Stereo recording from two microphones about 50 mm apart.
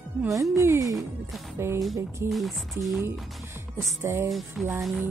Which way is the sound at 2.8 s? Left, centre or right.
Right.